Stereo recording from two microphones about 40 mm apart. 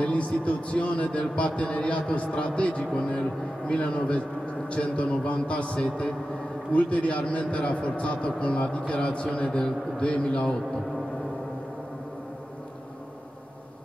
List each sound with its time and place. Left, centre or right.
0.0 s a man's voice: left
5.9 s a man's voice: centre
6.7 s a man's voice: left